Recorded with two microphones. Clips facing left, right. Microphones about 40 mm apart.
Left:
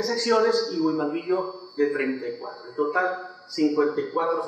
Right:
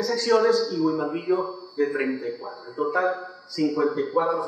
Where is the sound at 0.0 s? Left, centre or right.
Centre.